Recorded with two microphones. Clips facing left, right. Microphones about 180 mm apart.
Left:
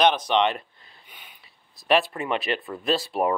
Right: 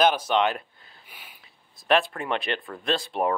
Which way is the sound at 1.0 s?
10° right (ahead or behind).